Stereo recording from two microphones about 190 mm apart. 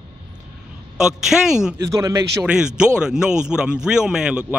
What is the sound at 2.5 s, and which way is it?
A man's voice, 5° right (ahead or behind).